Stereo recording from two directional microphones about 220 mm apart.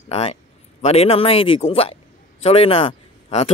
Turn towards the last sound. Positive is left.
turn(degrees=25)  # may be behind; listen again after turning